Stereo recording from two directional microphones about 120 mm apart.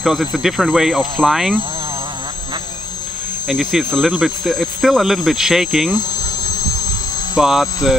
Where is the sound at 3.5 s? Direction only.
Centre (ahead or behind).